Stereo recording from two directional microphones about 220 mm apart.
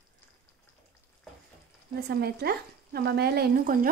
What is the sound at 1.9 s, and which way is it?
Speech, 45° right (ahead or behind).